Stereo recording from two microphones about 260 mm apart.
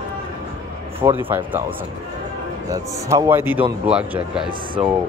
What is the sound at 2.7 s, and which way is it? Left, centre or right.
A man's voice, centre.